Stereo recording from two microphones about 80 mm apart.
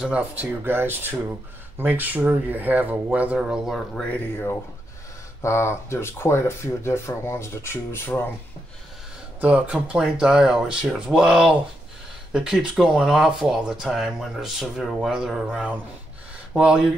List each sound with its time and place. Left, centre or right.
0.0 s speech: centre
3.9 s speech: centre
5.4 s speech: left
9.4 s speech: centre